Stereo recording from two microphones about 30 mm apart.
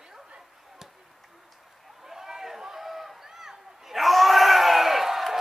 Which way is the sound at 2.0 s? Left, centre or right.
Centre.